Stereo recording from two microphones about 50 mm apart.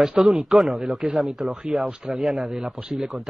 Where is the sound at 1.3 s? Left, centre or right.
Centre.